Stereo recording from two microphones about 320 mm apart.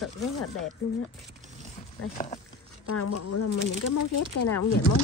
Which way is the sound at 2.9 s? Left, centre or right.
Left.